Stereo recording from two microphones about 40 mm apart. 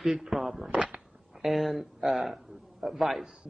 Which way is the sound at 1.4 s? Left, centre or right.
Centre.